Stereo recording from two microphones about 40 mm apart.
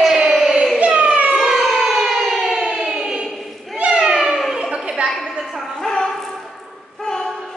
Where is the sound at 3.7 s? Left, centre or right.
Right; by 4.6 s centre.